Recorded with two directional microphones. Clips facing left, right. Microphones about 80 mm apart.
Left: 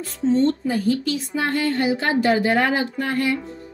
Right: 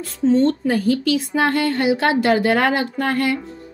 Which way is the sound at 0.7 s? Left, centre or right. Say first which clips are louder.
Right 3 dB; right.